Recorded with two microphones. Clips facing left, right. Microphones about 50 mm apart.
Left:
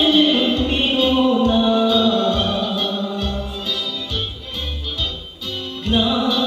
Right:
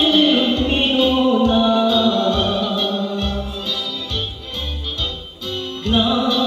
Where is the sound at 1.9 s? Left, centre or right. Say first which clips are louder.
Even; centre.